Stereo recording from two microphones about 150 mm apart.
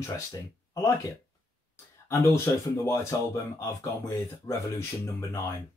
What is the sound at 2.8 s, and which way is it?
Speech, 15° left (ahead or behind).